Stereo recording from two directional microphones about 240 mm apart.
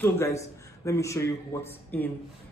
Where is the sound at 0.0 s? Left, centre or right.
Centre.